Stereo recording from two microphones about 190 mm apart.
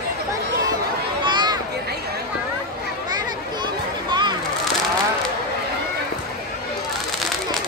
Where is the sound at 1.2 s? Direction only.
25° right (ahead or behind).